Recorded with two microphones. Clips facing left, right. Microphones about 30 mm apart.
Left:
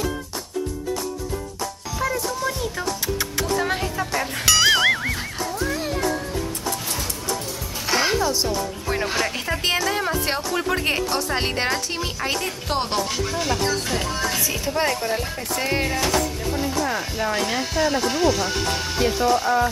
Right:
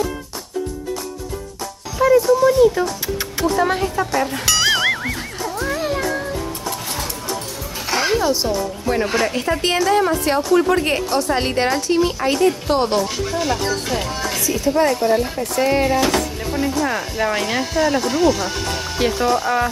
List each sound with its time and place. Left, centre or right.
2.0 s speech: centre
5.5 s music: centre
7.8 s music: centre
8.2 s speech: centre
10.2 s speech: centre
10.6 s speech: centre
14.4 s speech: centre
15.0 s speech: centre
16.2 s music: centre
17.6 s speech: centre